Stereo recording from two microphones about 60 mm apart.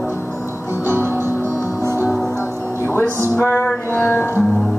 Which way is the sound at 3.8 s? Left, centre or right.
Left.